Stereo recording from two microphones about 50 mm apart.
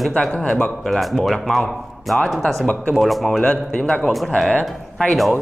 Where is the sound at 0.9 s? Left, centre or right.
Centre.